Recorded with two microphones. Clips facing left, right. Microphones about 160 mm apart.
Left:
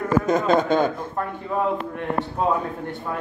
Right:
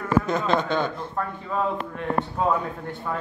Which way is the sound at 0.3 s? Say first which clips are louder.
Left 4 dB; 45° left (ahead or behind).